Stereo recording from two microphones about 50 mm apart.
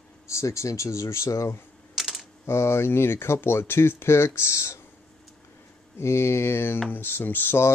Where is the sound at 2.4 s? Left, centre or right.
Left.